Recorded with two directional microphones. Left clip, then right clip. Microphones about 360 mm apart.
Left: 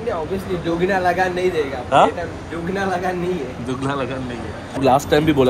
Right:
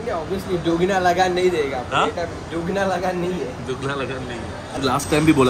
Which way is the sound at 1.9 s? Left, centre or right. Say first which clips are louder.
Left 7 dB; centre.